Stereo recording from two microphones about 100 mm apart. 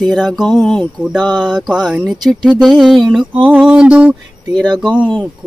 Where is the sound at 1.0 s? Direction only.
10° right (ahead or behind).